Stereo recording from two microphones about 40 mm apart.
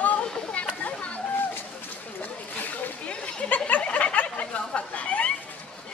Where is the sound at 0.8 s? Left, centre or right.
Left.